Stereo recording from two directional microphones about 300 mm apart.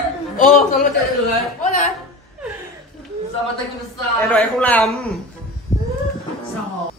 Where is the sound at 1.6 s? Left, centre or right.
Left.